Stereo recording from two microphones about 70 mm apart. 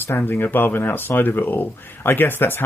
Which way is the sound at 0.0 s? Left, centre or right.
Left.